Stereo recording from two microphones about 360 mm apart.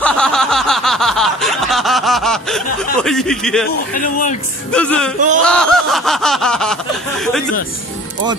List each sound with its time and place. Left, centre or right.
0.0 s snicker: centre
3.9 s speech: left
4.7 s snicker: centre